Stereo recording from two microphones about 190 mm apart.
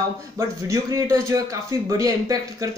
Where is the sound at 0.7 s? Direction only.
15° right (ahead or behind).